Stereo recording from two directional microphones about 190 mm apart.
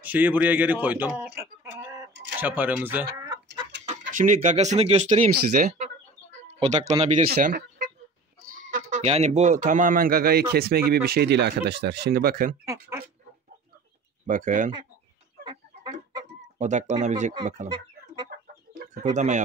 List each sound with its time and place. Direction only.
0.0 s a man's voice: 10° right (ahead or behind)
3.2 s chicken: 20° right (ahead or behind)
4.1 s speech: 40° right (ahead or behind)
6.4 s bird: 35° right (ahead or behind)
7.2 s speech: 50° right (ahead or behind)
14.2 s speech: 45° right (ahead or behind)
15.4 s chicken: 20° right (ahead or behind)
16.5 s speech: 40° right (ahead or behind)
17.6 s chicken: 25° right (ahead or behind)
19.1 s speech: 40° right (ahead or behind)